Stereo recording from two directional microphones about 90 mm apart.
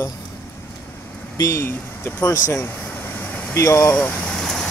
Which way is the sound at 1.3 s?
35° left (ahead or behind).